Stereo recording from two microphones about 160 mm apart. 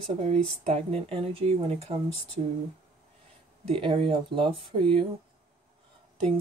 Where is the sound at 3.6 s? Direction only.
35° right (ahead or behind).